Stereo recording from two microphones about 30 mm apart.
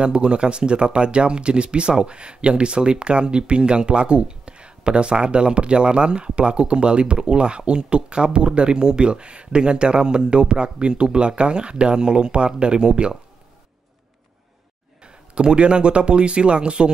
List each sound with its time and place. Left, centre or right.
0.0 s speech: right
15.0 s speech: right